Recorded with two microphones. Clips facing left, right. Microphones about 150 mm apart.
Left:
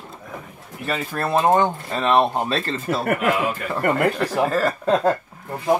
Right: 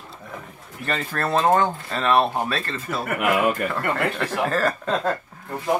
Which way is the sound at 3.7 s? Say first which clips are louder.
Left 4 dB; 10° left (ahead or behind).